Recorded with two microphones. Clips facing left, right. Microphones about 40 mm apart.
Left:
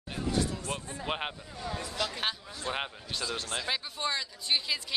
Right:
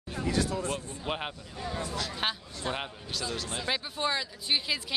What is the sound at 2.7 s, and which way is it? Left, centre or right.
Speech, centre.